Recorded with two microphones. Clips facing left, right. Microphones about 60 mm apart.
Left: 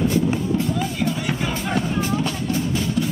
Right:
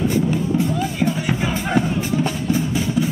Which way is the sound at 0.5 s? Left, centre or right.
Centre.